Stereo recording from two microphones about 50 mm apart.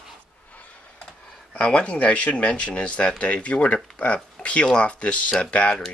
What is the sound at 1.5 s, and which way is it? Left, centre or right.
Speech, left.